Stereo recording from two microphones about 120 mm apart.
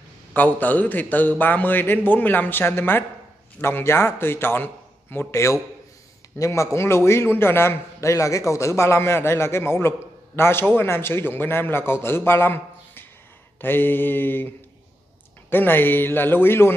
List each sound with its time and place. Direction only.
0.3 s a man's voice: 15° left (ahead or behind)
15.5 s a man's voice: 15° left (ahead or behind)